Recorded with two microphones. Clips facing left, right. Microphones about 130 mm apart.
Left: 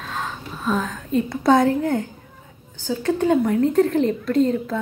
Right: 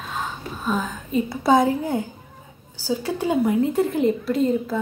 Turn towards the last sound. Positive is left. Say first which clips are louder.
# left 2 dB
turn(degrees=-5)  # may be behind; listen again after turning